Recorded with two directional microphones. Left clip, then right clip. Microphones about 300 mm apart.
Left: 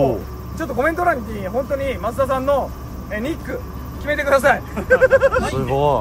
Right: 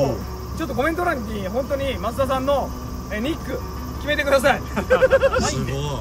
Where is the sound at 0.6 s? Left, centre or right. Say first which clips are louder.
Left 3 dB; centre.